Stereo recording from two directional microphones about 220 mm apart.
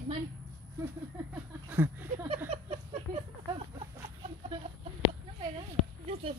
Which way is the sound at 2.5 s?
25° right (ahead or behind).